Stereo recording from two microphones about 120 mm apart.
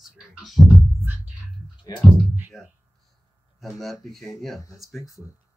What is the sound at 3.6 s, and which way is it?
Speech, centre (ahead or behind).